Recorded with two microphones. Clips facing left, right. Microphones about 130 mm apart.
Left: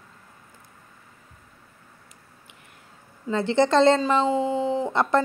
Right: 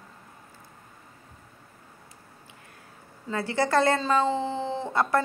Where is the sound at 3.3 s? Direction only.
20° left (ahead or behind).